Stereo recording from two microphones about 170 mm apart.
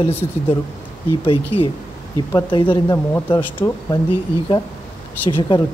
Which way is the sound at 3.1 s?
10° left (ahead or behind).